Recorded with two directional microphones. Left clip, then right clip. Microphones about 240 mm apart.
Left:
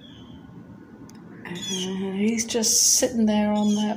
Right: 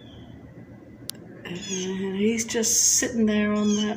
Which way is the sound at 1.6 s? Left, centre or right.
Left.